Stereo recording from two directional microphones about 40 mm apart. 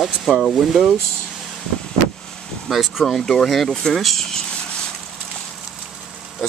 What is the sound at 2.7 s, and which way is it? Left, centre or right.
Speech, centre.